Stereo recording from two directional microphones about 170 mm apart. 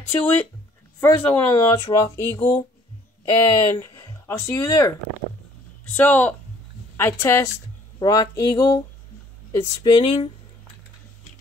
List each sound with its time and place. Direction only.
1.0 s speech: 10° left (ahead or behind)
5.9 s speech: 10° left (ahead or behind)
8.0 s a sound: 20° left (ahead or behind)
9.5 s speech: 15° left (ahead or behind)
10.0 s speech: 30° left (ahead or behind)